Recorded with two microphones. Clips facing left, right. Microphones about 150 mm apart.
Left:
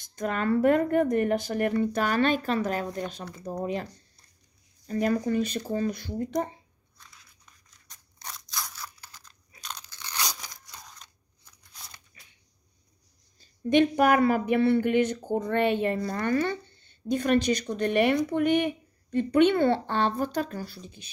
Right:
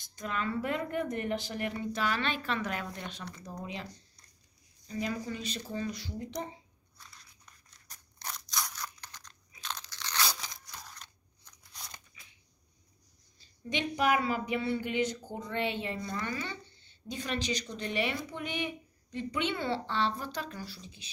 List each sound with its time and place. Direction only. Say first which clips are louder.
0.1 s a woman's voice: left 8 dB; 50° left (ahead or behind)
7.0 s scissors: even; centre (ahead or behind)
9.6 s crunch: even; 15° left (ahead or behind)
10.8 s crunch: even; centre (ahead or behind)
13.4 s a woman's voice: left 14 dB; 50° left (ahead or behind)